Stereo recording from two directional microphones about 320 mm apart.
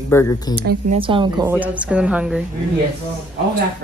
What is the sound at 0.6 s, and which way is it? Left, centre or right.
Speech, right.